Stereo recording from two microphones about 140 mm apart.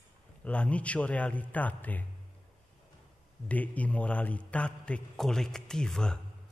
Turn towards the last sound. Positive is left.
turn(degrees=5)  # may be behind; listen again after turning